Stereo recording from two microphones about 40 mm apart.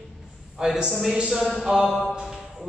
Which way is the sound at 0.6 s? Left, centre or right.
Centre.